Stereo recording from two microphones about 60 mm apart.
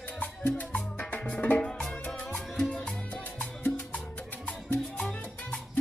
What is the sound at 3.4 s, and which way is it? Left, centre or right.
Music, left.